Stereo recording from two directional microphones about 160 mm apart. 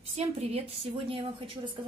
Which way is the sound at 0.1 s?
40° right (ahead or behind).